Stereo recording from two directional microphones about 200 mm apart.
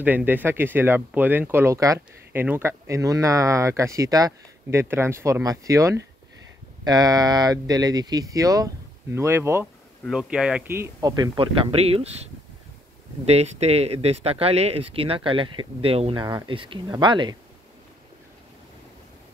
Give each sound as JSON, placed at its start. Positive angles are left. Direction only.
{"t": 0.0, "sound": "speech", "side_deg": -10}
{"t": 13.2, "sound": "speech", "side_deg": -30}